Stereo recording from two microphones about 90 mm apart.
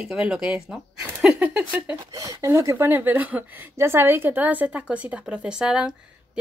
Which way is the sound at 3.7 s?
30° right (ahead or behind).